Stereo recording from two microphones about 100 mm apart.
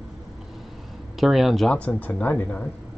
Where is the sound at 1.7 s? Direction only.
15° left (ahead or behind).